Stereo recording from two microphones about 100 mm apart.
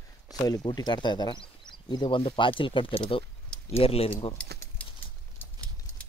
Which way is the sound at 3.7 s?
75° left (ahead or behind).